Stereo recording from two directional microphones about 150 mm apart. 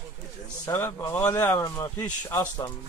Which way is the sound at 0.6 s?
20° left (ahead or behind).